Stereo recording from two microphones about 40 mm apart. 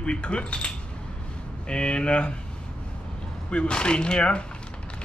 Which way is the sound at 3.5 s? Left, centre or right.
Left.